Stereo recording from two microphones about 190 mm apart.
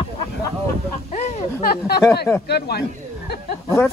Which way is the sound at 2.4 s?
60° left (ahead or behind).